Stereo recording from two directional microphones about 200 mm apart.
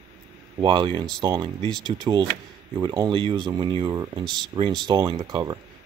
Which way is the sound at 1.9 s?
20° right (ahead or behind).